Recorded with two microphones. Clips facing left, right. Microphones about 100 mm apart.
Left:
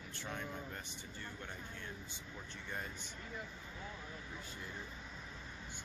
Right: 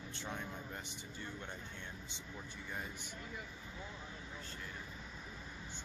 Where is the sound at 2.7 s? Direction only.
10° right (ahead or behind).